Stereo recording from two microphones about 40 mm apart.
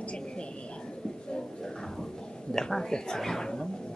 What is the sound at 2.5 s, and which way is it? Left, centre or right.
Speech, centre.